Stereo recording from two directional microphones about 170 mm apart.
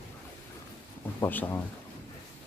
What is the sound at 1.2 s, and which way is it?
Speech, 10° left (ahead or behind).